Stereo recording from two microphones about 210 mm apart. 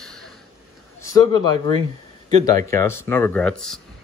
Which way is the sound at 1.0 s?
20° left (ahead or behind).